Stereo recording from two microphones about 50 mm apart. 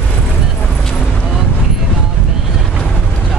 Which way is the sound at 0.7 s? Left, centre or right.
Centre.